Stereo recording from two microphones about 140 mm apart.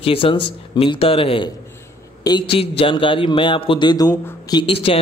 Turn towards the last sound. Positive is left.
turn(degrees=40)  # may be behind; listen again after turning